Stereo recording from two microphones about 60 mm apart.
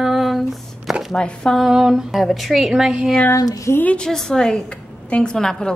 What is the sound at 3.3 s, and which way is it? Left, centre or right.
Speech, left.